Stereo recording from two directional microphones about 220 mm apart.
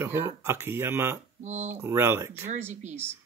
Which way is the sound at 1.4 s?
30° right (ahead or behind).